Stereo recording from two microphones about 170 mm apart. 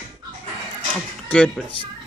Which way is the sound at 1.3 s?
Centre (ahead or behind).